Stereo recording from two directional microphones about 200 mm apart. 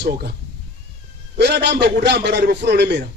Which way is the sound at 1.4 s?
60° right (ahead or behind).